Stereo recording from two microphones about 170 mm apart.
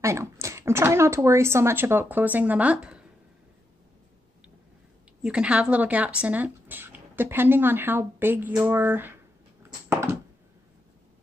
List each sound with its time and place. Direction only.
0.0 s speech: 15° right (ahead or behind)
5.2 s speech: 5° right (ahead or behind)